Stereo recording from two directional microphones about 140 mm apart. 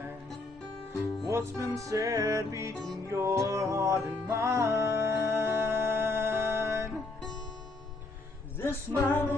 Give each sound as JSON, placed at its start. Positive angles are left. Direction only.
{"t": 1.2, "sound": "music", "side_deg": -20}
{"t": 8.5, "sound": "music", "side_deg": 15}